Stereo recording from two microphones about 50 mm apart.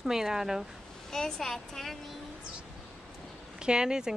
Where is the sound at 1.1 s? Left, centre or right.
Centre.